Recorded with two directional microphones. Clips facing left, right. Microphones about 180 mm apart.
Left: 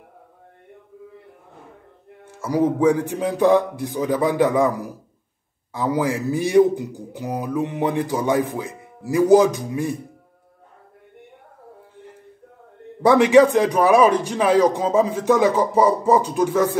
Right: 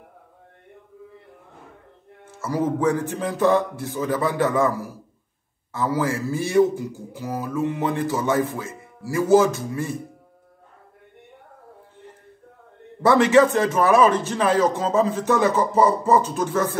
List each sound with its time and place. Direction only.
2.4 s a man's voice: 15° left (ahead or behind)
13.0 s a man's voice: 15° left (ahead or behind)